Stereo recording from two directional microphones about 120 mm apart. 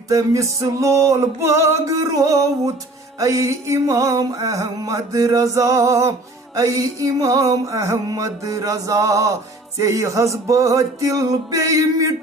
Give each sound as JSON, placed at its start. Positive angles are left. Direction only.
{"t": 0.1, "sound": "music", "side_deg": -25}